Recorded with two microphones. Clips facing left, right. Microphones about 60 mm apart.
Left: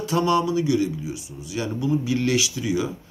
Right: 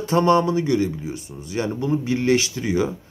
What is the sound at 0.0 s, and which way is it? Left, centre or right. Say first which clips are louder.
Speech: right 4 dB; right.